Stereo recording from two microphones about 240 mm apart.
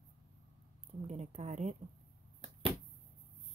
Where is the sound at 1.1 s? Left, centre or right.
Right.